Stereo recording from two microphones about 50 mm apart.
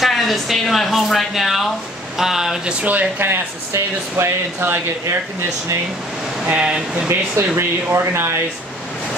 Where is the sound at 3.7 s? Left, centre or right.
Right.